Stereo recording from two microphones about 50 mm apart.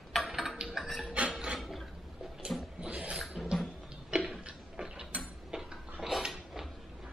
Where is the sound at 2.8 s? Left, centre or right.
Right.